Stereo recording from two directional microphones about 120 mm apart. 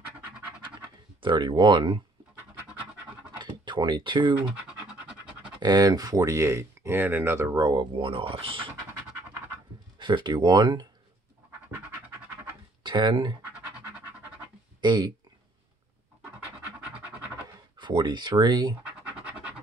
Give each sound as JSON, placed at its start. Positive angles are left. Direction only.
{"t": 1.2, "sound": "speech", "side_deg": -40}
{"t": 3.3, "sound": "speech", "side_deg": -40}
{"t": 4.4, "sound": "scratch", "side_deg": -10}
{"t": 5.6, "sound": "speech", "side_deg": -35}
{"t": 7.5, "sound": "speech", "side_deg": -40}
{"t": 9.9, "sound": "speech", "side_deg": -40}
{"t": 12.8, "sound": "speech", "side_deg": -40}
{"t": 14.8, "sound": "speech", "side_deg": -40}
{"t": 17.7, "sound": "speech", "side_deg": -40}